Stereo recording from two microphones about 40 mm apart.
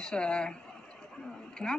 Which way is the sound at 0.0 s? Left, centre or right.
Left.